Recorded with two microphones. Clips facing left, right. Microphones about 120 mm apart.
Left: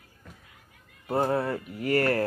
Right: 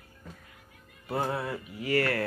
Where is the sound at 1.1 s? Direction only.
40° left (ahead or behind).